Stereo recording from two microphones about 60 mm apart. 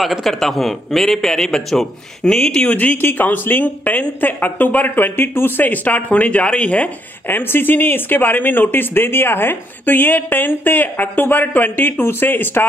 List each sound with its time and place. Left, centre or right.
0.0 s a man's voice: centre
2.8 s speech: left
7.2 s speech: left